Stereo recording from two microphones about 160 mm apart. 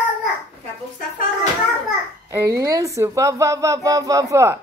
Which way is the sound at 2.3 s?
20° right (ahead or behind).